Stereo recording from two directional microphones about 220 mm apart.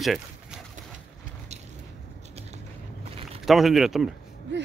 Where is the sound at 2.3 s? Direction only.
30° right (ahead or behind).